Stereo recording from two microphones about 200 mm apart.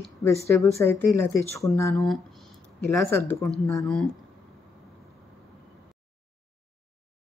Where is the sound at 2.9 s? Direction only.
15° left (ahead or behind).